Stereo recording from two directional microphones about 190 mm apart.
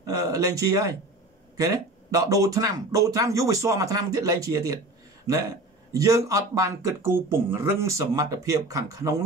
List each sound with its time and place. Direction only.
0.0 s speech: 20° right (ahead or behind)